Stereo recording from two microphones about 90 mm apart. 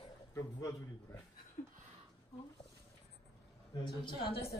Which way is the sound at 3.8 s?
60° left (ahead or behind).